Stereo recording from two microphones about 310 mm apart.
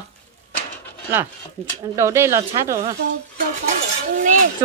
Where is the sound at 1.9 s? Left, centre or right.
Centre.